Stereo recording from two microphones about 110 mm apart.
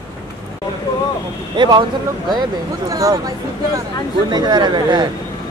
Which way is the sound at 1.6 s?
45° right (ahead or behind).